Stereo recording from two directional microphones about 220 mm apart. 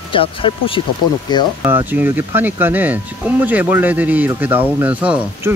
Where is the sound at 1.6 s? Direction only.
10° right (ahead or behind).